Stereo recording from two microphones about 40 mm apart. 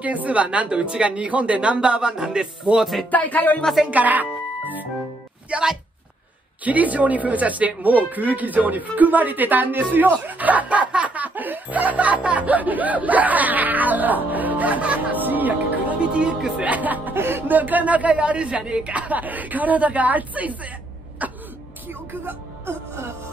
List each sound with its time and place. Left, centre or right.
0.0 s speech: right
2.8 s music: centre
3.1 s speech: left
3.9 s speech: right
5.5 s a woman's voice: right
15.2 s music: right
16.1 s speech: right
16.5 s a woman's voice: right
17.1 s speech: right
17.5 s a woman's voice: right
19.0 s a woman's voice: right